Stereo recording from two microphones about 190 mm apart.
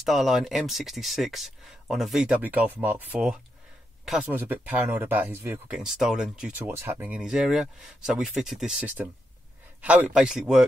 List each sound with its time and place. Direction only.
0.0 s speech: centre (ahead or behind)